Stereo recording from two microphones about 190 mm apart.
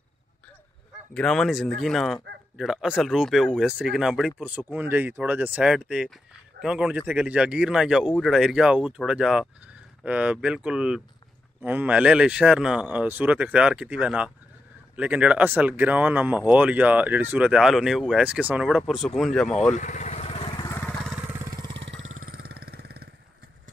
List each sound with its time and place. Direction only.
1.1 s speech: 5° left (ahead or behind)
19.7 s vehicle: 40° left (ahead or behind); by 20.7 s 25° left (ahead or behind)
20.7 s vehicle: 10° left (ahead or behind)
21.1 s vehicle: 10° right (ahead or behind)
21.7 s vehicle: 75° right (ahead or behind); by 22.3 s 90° right
22.3 s vehicle: 55° right (ahead or behind)